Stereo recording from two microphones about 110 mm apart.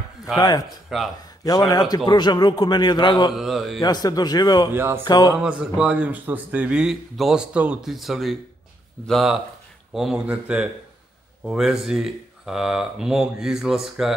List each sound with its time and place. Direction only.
0.4 s a man's voice: 35° left (ahead or behind)
0.8 s speech: centre (ahead or behind)
1.4 s a man's voice: 35° left (ahead or behind)
3.3 s speech: centre (ahead or behind)
3.8 s a man's voice: 35° left (ahead or behind)
4.7 s speech: 20° right (ahead or behind)
5.0 s a man's voice: 40° left (ahead or behind)
5.4 s speech: 10° right (ahead or behind)